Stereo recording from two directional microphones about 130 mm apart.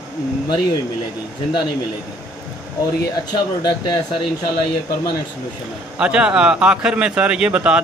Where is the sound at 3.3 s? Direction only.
30° left (ahead or behind).